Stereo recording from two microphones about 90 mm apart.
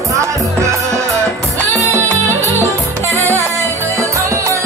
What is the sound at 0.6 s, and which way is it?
Music, 35° right (ahead or behind).